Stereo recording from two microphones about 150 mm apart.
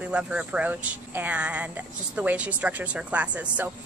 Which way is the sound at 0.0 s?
5° right (ahead or behind).